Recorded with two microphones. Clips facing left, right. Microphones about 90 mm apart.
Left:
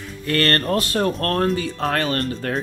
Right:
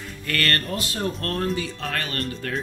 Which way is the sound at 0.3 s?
35° left (ahead or behind).